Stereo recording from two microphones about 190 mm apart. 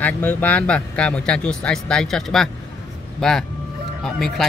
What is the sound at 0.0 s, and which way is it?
Speech, 10° left (ahead or behind).